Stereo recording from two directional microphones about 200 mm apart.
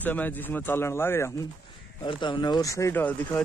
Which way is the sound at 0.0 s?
10° left (ahead or behind).